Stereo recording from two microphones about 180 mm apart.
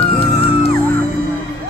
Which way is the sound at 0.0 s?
35° left (ahead or behind).